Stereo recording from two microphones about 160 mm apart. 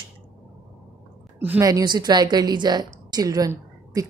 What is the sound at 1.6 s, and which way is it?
A woman's voice, 20° right (ahead or behind).